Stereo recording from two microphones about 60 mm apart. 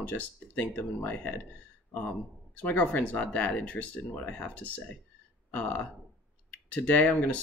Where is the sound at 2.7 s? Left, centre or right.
Left.